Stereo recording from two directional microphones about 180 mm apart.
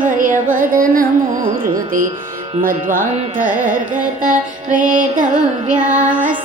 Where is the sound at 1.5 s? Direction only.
50° right (ahead or behind).